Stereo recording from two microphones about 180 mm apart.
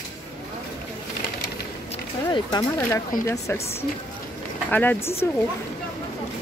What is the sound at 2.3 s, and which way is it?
Speech, 20° left (ahead or behind).